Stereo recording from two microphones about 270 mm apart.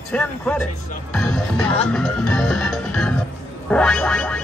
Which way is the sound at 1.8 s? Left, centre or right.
Centre.